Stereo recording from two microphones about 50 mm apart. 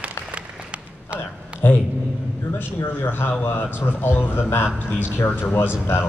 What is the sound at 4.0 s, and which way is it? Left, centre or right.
Speech, left.